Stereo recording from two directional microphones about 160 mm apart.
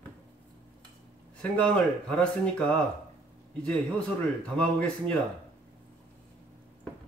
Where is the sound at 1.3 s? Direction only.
5° left (ahead or behind).